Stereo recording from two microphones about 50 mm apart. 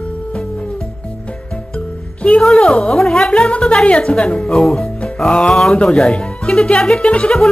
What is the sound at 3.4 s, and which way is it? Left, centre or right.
Speech, left.